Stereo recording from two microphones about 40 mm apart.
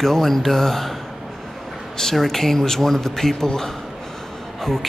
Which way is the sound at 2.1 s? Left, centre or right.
Centre.